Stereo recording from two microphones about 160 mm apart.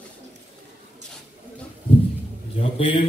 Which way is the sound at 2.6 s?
35° left (ahead or behind).